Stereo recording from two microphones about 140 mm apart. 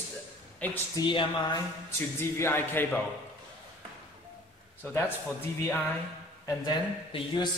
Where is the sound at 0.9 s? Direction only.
30° left (ahead or behind).